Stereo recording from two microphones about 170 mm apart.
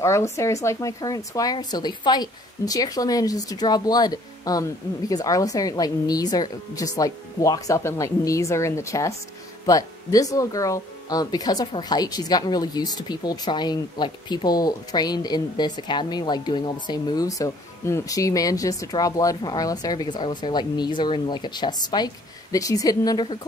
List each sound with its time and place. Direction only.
0.0 s speech: 15° left (ahead or behind)